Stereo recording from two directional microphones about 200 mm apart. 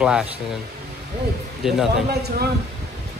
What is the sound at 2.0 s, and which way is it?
Speech, 50° right (ahead or behind).